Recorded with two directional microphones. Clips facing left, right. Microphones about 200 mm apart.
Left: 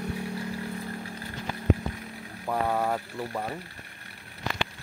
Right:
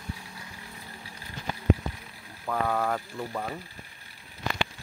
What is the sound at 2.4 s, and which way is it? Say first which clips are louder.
Speech: left 1 dB; 15° left (ahead or behind).